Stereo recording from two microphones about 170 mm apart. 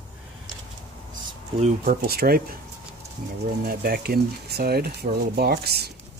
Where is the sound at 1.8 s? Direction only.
60° right (ahead or behind).